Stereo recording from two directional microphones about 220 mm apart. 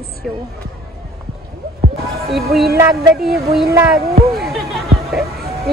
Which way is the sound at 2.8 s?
15° right (ahead or behind).